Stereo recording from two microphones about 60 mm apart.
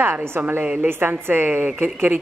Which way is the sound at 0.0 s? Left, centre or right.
Right.